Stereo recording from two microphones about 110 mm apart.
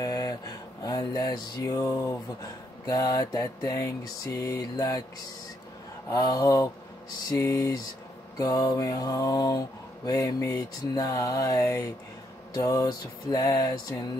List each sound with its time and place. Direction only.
0.0 s mantra: 35° left (ahead or behind)
6.0 s mantra: 35° left (ahead or behind)
7.2 s a sound: 30° left (ahead or behind)
8.4 s mantra: 35° left (ahead or behind)